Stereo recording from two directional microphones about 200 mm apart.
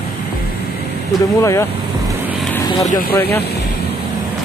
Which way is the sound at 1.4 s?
15° left (ahead or behind).